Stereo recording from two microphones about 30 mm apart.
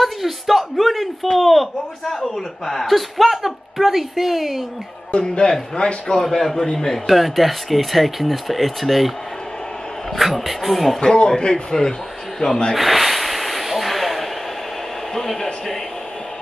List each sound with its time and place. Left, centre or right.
0.0 s speech: centre
2.3 s a child's voice: centre
5.4 s a man's voice: left
6.2 s speech: centre
7.1 s speech: centre
10.1 s speech: centre
11.0 s a man's voice: left
12.4 s a man's voice: left
12.7 s snort: centre
15.1 s speech: centre